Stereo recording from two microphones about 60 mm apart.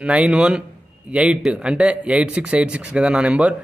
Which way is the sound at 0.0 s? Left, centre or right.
Centre.